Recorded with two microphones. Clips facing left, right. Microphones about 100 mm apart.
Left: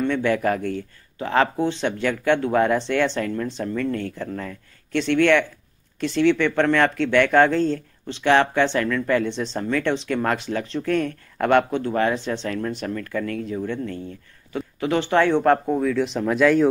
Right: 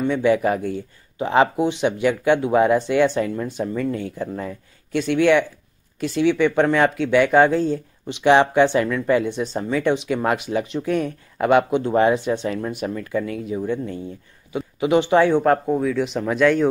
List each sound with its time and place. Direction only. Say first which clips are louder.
0.0 s speech: right 3 dB; 10° right (ahead or behind)
11.8 s speech: right 4 dB; 20° right (ahead or behind); by 16.6 s centre (ahead or behind)